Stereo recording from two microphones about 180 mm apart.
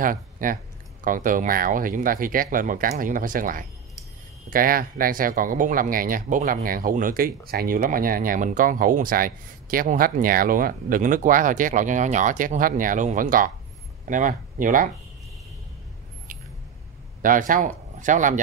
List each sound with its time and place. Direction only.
0.0 s speech: 50° right (ahead or behind)
16.3 s vehicle: 50° right (ahead or behind)
17.2 s a man's voice: 50° right (ahead or behind)